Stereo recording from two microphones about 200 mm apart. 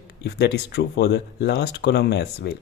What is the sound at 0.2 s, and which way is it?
Speech, 55° left (ahead or behind).